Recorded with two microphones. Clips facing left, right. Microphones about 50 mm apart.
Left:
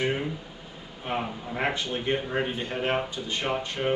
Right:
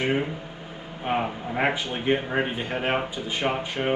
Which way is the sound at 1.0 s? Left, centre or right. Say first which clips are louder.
Right 4 dB; right.